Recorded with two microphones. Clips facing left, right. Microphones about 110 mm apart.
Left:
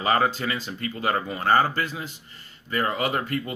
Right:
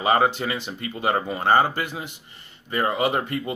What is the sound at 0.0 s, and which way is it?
Speech, 20° right (ahead or behind).